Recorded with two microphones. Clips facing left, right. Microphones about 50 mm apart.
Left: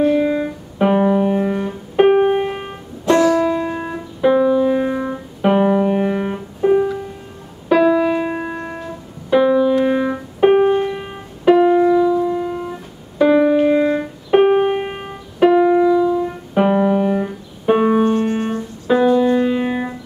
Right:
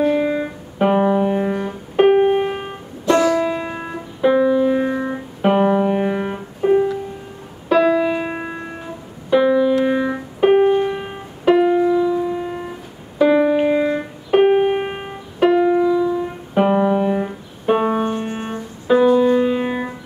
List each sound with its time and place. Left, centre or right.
0.0 s music: centre
3.9 s piano: centre
7.6 s music: centre
8.2 s music: centre
9.3 s keyboard: centre
10.4 s music: centre
13.2 s keyboard: centre
13.7 s music: centre
17.6 s music: centre
18.0 s music: centre